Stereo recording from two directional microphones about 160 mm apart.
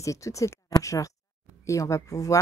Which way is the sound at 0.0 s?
20° left (ahead or behind).